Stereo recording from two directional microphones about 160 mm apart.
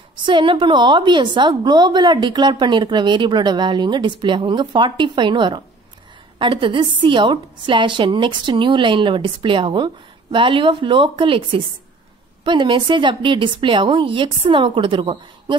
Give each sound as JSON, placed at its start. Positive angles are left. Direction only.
{"t": 0.1, "sound": "a woman's voice", "side_deg": -30}